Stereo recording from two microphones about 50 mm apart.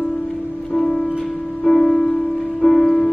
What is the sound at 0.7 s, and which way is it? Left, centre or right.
Music, centre.